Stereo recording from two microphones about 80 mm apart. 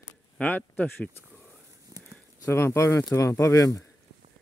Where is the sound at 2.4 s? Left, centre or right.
Left.